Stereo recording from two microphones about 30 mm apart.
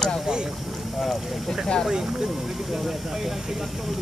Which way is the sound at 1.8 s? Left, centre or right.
Centre.